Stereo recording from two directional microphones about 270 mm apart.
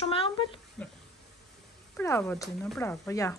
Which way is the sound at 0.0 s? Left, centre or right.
Centre.